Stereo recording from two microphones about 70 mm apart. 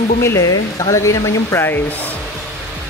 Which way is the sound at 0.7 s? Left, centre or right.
Left.